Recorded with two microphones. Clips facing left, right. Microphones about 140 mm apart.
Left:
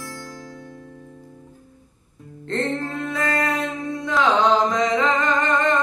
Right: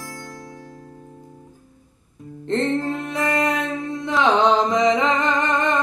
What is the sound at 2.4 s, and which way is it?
Music, 20° right (ahead or behind).